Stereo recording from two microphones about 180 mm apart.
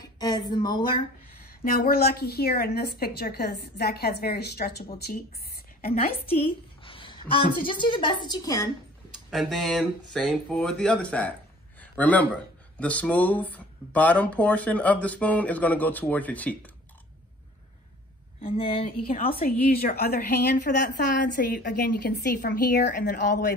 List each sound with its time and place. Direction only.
0.0 s a woman's voice: 20° left (ahead or behind)
1.6 s a woman's voice: 55° left (ahead or behind)
6.8 s a woman's voice: 30° left (ahead or behind)
9.3 s a man's voice: centre (ahead or behind)
18.4 s speech: 30° left (ahead or behind)
19.2 s a woman's voice: 55° left (ahead or behind)
20.7 s a woman's voice: 50° left (ahead or behind)